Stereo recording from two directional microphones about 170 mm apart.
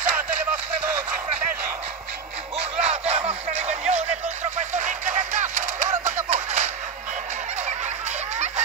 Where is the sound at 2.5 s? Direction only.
40° right (ahead or behind).